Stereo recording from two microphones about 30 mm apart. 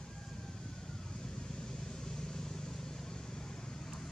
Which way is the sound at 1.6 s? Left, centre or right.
Left.